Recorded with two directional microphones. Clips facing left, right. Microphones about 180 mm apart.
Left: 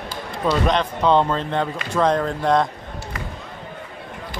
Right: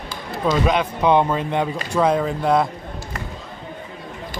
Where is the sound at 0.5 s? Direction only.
5° right (ahead or behind).